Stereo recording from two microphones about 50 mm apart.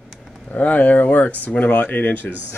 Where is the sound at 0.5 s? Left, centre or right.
Left.